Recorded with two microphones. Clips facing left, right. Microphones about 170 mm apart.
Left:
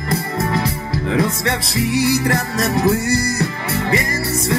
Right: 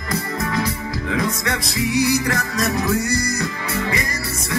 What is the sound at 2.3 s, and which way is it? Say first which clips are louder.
Music: left 3 dB; 25° left (ahead or behind).